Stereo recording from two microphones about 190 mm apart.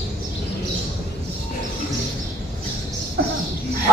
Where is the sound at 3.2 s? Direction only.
60° right (ahead or behind).